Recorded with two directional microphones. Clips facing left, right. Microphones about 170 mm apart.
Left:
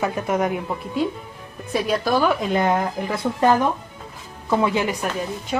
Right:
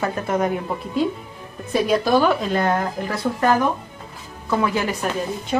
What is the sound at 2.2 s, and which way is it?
A woman's voice, 15° left (ahead or behind).